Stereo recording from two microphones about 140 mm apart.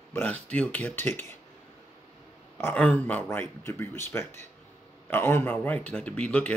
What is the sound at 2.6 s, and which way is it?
Speech, 10° left (ahead or behind).